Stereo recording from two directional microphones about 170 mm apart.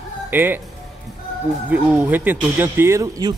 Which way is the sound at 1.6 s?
10° right (ahead or behind).